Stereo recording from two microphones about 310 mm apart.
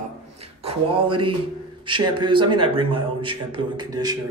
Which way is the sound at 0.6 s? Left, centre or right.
Centre.